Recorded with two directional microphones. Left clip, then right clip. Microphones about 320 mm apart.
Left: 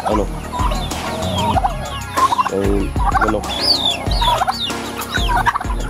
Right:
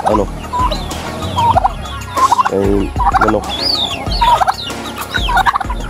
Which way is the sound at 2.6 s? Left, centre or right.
Right.